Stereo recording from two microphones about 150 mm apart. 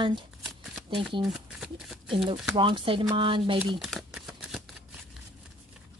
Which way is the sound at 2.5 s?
35° right (ahead or behind).